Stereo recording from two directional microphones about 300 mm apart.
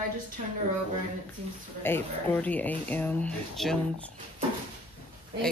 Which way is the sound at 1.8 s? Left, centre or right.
Centre.